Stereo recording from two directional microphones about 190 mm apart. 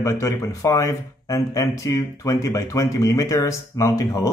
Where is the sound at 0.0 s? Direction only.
15° left (ahead or behind).